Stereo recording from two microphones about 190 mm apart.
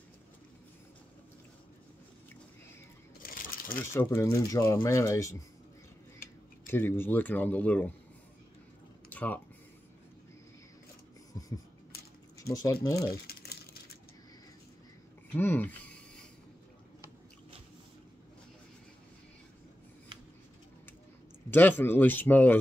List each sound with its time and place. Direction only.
3.2 s coin: 50° left (ahead or behind)
3.8 s a man's voice: 10° left (ahead or behind)
6.7 s a man's voice: 10° left (ahead or behind)
9.1 s a sound: 10° left (ahead or behind)
11.3 s a sound: 20° left (ahead or behind)
12.4 s speech: 15° left (ahead or behind)
13.1 s a sound: 55° left (ahead or behind)
15.3 s speech: 10° left (ahead or behind)
21.5 s a man's voice: 10° left (ahead or behind)